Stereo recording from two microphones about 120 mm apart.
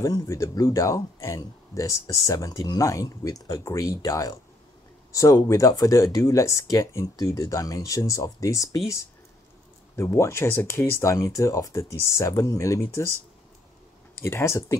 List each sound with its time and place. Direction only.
0.0 s speech: 30° left (ahead or behind)
14.1 s speech: 20° left (ahead or behind)